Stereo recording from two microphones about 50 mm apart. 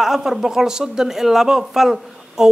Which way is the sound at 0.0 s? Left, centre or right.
Centre.